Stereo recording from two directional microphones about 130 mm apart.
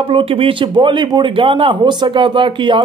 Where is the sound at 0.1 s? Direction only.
45° right (ahead or behind).